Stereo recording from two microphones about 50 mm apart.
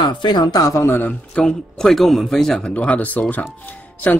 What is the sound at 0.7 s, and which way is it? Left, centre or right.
Speech, left.